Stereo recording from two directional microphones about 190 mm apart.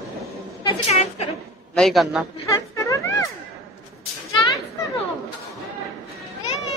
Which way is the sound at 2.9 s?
15° left (ahead or behind).